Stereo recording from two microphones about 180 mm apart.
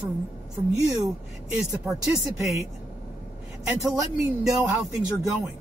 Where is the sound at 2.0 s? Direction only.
15° right (ahead or behind).